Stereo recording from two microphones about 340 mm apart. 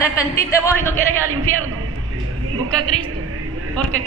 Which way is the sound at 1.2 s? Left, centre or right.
Right.